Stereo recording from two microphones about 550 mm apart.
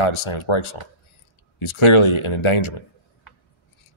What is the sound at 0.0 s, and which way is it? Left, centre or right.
Speech, left.